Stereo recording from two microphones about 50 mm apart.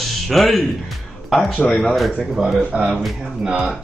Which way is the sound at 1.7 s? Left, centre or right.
Centre.